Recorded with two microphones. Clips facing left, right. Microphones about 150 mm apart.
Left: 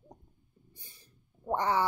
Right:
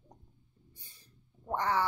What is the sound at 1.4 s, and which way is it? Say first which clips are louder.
Speech: left 2 dB; 15° left (ahead or behind).